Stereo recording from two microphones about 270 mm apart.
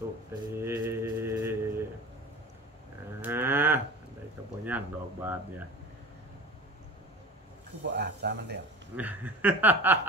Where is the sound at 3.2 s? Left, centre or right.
Centre.